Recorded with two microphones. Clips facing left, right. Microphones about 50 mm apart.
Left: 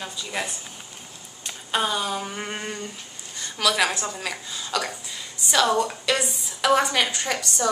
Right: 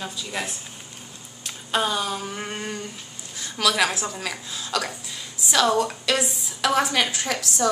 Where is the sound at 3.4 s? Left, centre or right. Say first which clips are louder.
Right 1 dB; centre.